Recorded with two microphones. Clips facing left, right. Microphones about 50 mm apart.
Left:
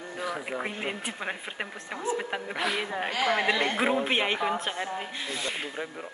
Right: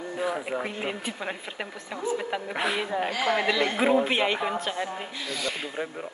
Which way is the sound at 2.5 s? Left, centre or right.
Right.